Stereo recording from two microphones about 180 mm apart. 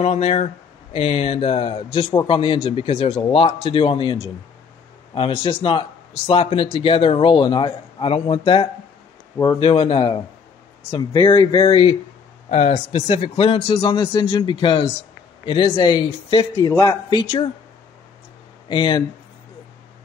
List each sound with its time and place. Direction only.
0.0 s speech: 35° left (ahead or behind)
18.7 s speech: 25° left (ahead or behind)